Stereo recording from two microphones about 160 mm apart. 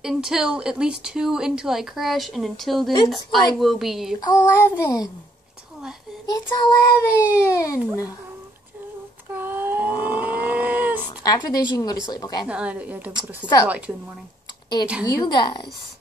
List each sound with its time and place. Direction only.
0.0 s speech: 5° right (ahead or behind)
4.2 s child singing: 20° left (ahead or behind)
6.5 s child singing: 15° left (ahead or behind)
7.8 s a woman's voice: 5° right (ahead or behind)
9.3 s a sound: 15° right (ahead or behind)
9.8 s vehicle: 30° left (ahead or behind)
10.2 s vehicle: 10° right (ahead or behind)
11.1 s a woman's voice: 25° left (ahead or behind)
11.7 s child singing: 25° left (ahead or behind)
12.4 s a woman's voice: 5° right (ahead or behind)
15.0 s child singing: 25° left (ahead or behind)